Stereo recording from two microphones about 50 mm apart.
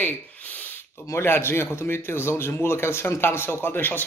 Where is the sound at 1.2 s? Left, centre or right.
Left.